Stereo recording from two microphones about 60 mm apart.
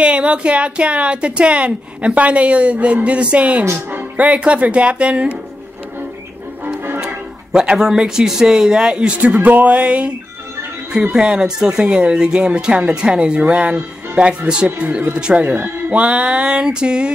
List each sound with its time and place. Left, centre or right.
0.0 s a woman's voice: centre
7.5 s speech: centre
9.4 s a woman's voice: right